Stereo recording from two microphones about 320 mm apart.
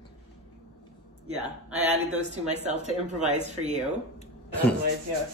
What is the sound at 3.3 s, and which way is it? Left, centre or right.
Speech, right.